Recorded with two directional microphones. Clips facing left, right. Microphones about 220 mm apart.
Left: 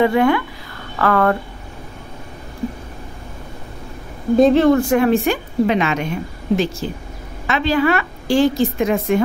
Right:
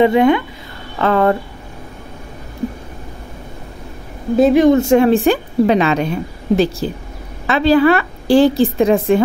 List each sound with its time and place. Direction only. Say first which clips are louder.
0.0 s speech: right 3 dB; 20° right (ahead or behind)
4.4 s speech: right 1 dB; 10° right (ahead or behind)
4.6 s speech: right 3 dB; 25° right (ahead or behind)